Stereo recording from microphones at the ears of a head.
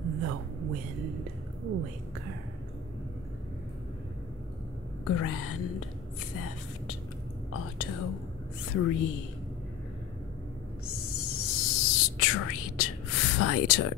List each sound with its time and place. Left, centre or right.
0.0 s a woman's voice: right
5.0 s speech: left
7.5 s speech: left
10.9 s whispering: left